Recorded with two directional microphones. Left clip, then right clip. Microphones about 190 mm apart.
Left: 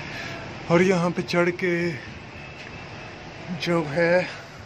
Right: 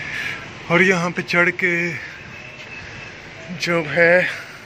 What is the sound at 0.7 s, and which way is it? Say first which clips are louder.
Speech: right 4 dB; 5° left (ahead or behind).